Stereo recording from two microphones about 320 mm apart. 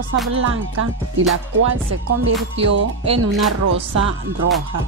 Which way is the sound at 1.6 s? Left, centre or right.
Right.